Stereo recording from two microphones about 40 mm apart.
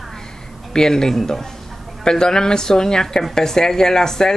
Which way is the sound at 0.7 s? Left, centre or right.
Centre.